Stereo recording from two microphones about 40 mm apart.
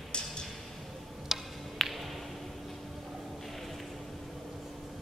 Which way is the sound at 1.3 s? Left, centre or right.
Centre.